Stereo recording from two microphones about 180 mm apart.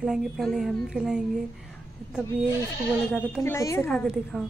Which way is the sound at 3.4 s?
15° left (ahead or behind).